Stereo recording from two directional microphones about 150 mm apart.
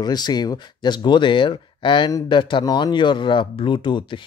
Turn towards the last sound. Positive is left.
turn(degrees=30)  # may be behind; listen again after turning